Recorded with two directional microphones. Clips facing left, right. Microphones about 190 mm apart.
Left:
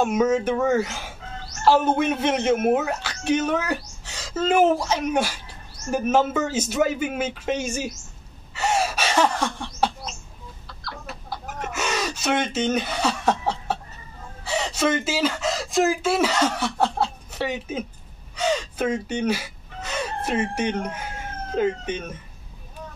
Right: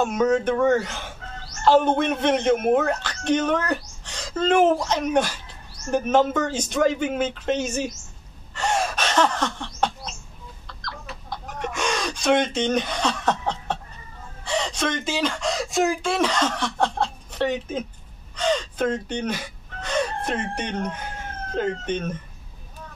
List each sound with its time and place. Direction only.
0.0 s a woman's voice: 10° left (ahead or behind)
8.5 s a sound: 5° left (ahead or behind)
10.8 s chicken: 5° left (ahead or behind)
14.4 s speech: 5° left (ahead or behind)
18.3 s gasp: 10° left (ahead or behind)
21.5 s a woman's voice: 10° left (ahead or behind)